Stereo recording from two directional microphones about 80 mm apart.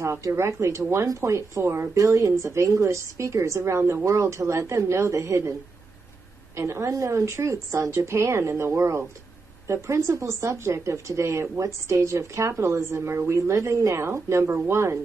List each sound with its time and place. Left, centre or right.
0.0 s speech: right
6.5 s speech: right